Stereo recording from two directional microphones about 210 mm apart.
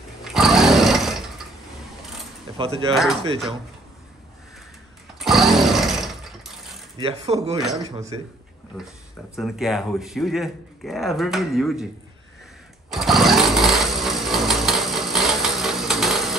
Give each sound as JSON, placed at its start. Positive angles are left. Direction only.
{"t": 0.2, "sound": "a sound", "side_deg": 0}
{"t": 2.5, "sound": "speech", "side_deg": -25}
{"t": 2.9, "sound": "speech", "side_deg": 0}
{"t": 5.2, "sound": "a sound", "side_deg": 0}
{"t": 7.0, "sound": "speech", "side_deg": -25}
{"t": 8.7, "sound": "speech", "side_deg": 0}
{"t": 12.9, "sound": "sewing machine", "side_deg": 0}